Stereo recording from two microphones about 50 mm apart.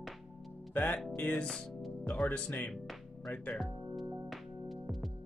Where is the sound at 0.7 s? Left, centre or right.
Left.